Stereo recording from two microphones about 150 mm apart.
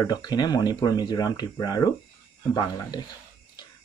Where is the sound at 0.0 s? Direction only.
25° left (ahead or behind).